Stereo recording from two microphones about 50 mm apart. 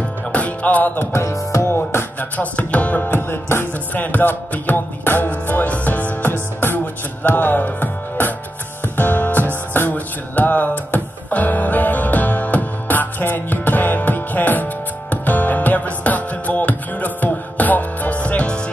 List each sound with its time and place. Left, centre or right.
0.3 s music: left
1.1 s music: left
1.7 s music: left
2.1 s music: left
3.2 s music: left
3.9 s music: left